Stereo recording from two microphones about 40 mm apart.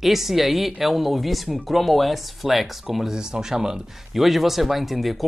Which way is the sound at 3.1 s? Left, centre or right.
Centre.